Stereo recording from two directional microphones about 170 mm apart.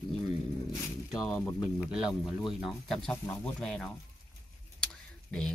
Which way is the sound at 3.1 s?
15° left (ahead or behind).